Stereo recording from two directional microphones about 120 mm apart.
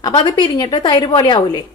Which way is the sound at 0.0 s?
35° left (ahead or behind).